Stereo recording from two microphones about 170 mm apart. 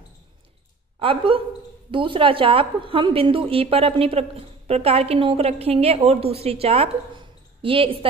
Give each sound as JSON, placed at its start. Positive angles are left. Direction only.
{"t": 0.9, "sound": "a woman's voice", "side_deg": -35}